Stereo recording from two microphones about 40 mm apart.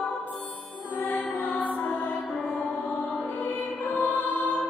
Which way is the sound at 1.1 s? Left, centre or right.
Left.